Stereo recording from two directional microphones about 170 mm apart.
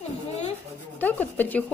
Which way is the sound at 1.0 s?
10° left (ahead or behind).